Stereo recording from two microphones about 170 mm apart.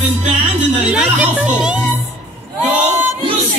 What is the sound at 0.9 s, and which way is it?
Speech, 5° right (ahead or behind).